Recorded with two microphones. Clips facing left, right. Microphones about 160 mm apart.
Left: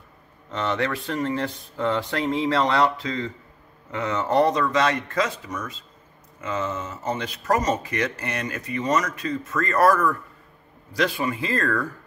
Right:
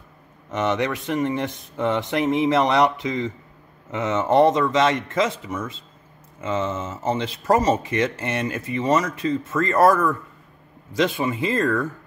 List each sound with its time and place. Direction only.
0.5 s speech: 20° right (ahead or behind)